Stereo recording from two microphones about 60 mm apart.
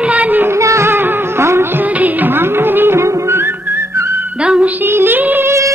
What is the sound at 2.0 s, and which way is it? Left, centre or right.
Music, right.